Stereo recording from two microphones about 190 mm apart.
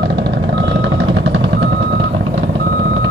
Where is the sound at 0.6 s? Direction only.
85° right.